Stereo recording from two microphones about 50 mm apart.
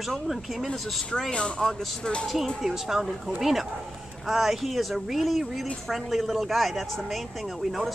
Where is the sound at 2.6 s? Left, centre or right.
Centre.